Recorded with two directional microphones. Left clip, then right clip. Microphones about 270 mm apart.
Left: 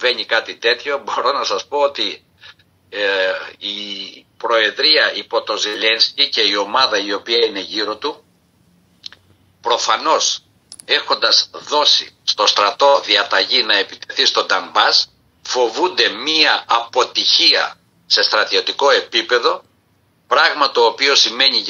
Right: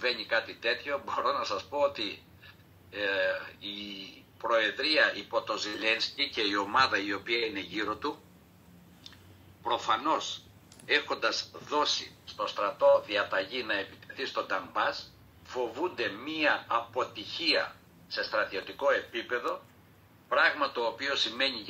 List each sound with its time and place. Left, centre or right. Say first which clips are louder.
0.0 s a man's voice: left 13 dB; left
9.0 s a sound: left 17 dB; left
9.6 s a man's voice: left 13 dB; left